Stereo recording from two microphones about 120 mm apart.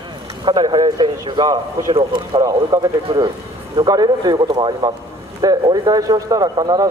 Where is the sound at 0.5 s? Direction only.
35° right (ahead or behind).